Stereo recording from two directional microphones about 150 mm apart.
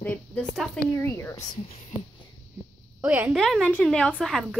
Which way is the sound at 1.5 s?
40° left (ahead or behind).